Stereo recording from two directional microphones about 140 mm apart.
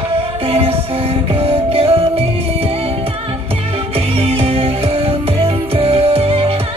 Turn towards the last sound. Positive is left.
turn(degrees=-45)  # may be behind; listen again after turning